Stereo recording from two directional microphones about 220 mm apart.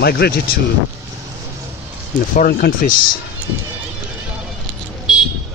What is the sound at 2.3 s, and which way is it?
Speech, 40° left (ahead or behind).